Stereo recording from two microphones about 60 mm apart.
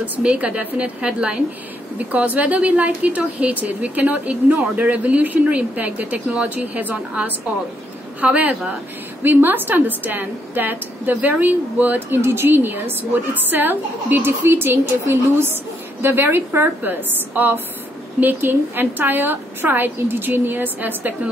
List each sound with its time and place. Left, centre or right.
0.0 s a woman's voice: right